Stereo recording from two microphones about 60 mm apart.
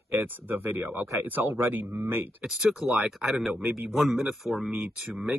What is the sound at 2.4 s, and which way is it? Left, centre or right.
A man's voice, centre.